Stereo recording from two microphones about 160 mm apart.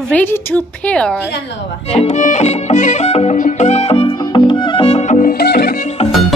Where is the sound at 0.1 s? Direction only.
10° left (ahead or behind).